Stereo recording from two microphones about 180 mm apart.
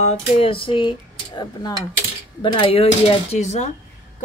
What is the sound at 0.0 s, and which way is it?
Speech, 35° left (ahead or behind).